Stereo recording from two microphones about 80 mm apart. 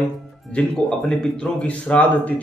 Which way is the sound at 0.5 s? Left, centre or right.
Centre.